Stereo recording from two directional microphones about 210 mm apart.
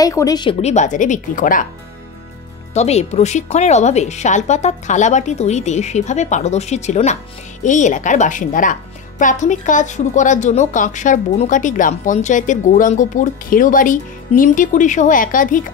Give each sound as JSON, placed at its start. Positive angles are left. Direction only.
{"t": 0.0, "sound": "a woman's voice", "side_deg": 15}
{"t": 2.7, "sound": "a woman's voice", "side_deg": 30}